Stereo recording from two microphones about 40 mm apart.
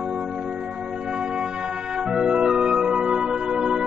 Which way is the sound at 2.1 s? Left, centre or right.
Centre.